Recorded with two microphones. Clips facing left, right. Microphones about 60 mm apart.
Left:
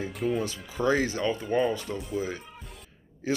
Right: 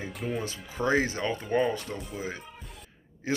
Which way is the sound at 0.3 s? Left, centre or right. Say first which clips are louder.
Left 4 dB; right.